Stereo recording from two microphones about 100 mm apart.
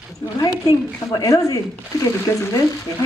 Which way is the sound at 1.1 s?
35° left (ahead or behind).